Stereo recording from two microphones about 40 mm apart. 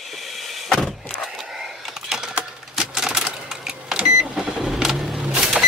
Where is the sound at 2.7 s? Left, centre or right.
Centre.